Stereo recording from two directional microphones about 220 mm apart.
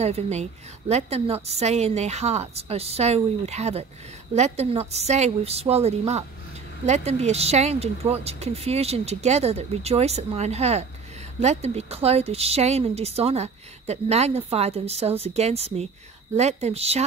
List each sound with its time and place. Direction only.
0.0 s a woman's voice: 30° right (ahead or behind)